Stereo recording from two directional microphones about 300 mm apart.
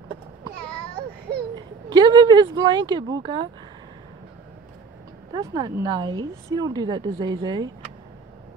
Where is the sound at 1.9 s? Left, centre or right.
Centre.